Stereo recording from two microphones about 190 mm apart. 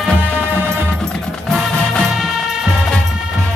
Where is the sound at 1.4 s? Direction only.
Centre (ahead or behind).